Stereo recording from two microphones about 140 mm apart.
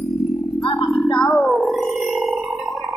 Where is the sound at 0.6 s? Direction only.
35° left (ahead or behind).